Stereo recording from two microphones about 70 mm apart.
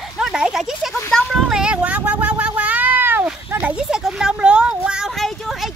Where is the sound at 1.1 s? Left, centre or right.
Centre.